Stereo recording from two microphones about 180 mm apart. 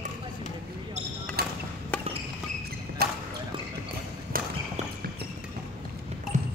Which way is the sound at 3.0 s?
60° right (ahead or behind).